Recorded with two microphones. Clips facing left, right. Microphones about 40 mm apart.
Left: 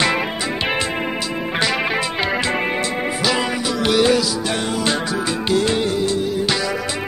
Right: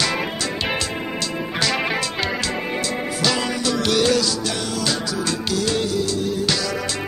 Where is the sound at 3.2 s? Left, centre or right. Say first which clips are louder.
Even; centre.